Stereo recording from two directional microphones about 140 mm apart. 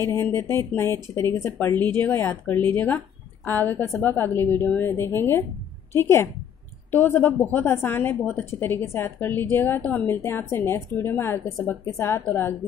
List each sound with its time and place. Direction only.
0.0 s speech: 20° left (ahead or behind)